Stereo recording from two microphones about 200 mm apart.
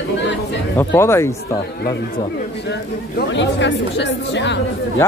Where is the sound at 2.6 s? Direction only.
55° left (ahead or behind).